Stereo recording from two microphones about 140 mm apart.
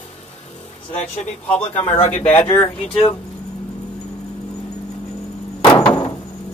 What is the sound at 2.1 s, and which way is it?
Speech, 15° left (ahead or behind).